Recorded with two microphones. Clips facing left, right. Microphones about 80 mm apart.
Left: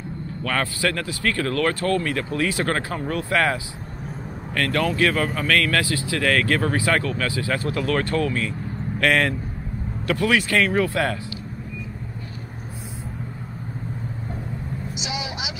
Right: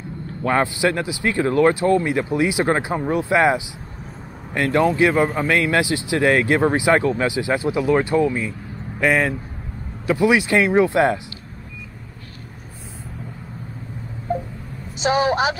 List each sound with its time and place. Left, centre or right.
0.4 s speech: right
9.0 s speech: centre; by 11.1 s right
15.0 s a woman's voice: right